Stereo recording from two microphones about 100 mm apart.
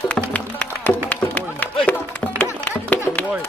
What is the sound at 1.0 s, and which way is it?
Run, 15° left (ahead or behind).